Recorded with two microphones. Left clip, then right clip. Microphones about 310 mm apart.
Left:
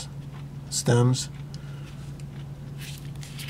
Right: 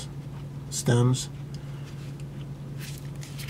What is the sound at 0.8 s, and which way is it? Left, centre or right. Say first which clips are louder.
Speech: left 2 dB; centre.